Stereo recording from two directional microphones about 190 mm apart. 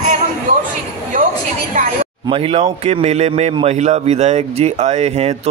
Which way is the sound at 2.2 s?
30° right (ahead or behind).